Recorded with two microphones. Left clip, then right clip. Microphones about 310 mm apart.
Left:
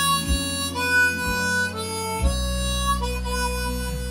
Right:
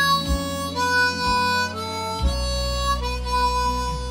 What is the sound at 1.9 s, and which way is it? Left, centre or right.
Harmonica, left.